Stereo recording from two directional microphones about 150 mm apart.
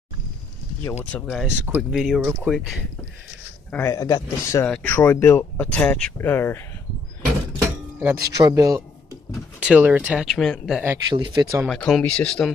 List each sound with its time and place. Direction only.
1.2 s speech: centre (ahead or behind)
3.7 s a man's voice: 20° left (ahead or behind)
4.6 s speech: 10° left (ahead or behind)
7.5 s a sound: 15° right (ahead or behind)
9.3 s speech: 5° right (ahead or behind)
11.1 s speech: 30° right (ahead or behind)
11.6 s speech: 5° left (ahead or behind)